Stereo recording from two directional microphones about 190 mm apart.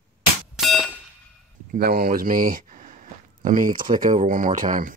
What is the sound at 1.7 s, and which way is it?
Speech, 55° right (ahead or behind).